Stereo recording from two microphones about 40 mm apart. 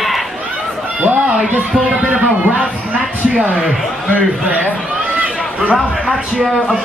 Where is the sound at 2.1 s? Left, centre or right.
Right.